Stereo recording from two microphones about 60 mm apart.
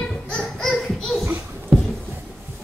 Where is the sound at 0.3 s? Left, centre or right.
Centre.